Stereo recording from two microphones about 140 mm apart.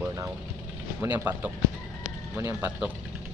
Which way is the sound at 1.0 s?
15° right (ahead or behind).